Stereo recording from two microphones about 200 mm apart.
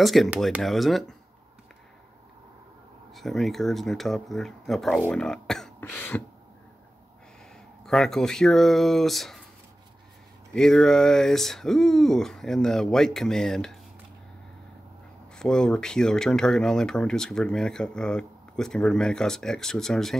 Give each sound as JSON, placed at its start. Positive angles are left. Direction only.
{"t": 0.0, "sound": "speech", "side_deg": 0}
{"t": 3.2, "sound": "speech", "side_deg": 0}
{"t": 7.8, "sound": "speech", "side_deg": 0}
{"t": 10.5, "sound": "speech", "side_deg": 5}
{"t": 15.3, "sound": "speech", "side_deg": 5}